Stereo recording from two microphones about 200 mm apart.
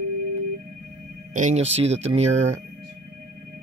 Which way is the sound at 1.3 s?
35° right (ahead or behind).